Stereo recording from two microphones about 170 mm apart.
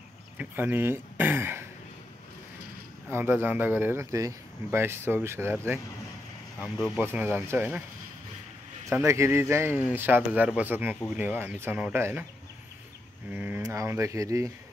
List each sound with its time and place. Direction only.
0.4 s speech: 10° right (ahead or behind)
3.1 s speech: 15° right (ahead or behind)
7.0 s speech: 15° right (ahead or behind)
8.8 s speech: 15° right (ahead or behind)
13.3 s speech: 10° right (ahead or behind)